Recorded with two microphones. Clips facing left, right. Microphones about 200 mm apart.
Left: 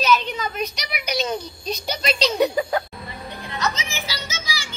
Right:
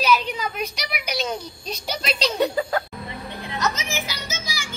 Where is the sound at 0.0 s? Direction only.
10° right (ahead or behind).